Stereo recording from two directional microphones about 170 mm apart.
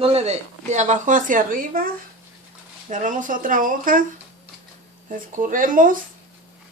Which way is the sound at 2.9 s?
50° right (ahead or behind).